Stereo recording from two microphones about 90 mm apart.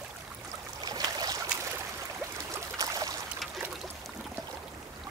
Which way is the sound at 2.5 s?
40° right (ahead or behind).